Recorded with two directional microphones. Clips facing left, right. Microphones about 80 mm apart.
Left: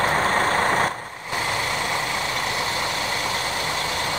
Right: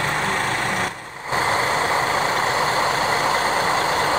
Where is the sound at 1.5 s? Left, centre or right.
Right.